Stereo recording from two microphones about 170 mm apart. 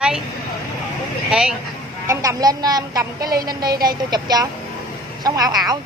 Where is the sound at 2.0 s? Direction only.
20° right (ahead or behind).